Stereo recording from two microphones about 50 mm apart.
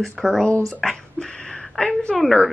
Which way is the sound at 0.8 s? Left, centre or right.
Centre.